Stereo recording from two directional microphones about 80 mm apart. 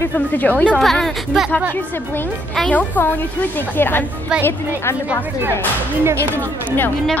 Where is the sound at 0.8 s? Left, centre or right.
Centre.